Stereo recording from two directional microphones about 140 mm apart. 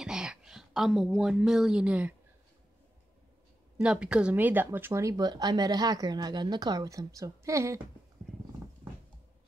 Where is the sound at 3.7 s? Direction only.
5° right (ahead or behind); by 7.8 s 20° right (ahead or behind).